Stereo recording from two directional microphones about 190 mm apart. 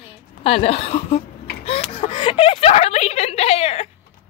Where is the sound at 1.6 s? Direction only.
30° left (ahead or behind).